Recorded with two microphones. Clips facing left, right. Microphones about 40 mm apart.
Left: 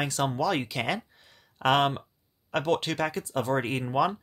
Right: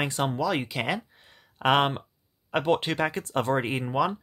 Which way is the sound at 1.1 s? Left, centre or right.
Centre.